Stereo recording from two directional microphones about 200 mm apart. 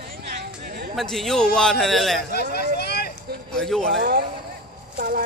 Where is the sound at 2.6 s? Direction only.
55° left (ahead or behind).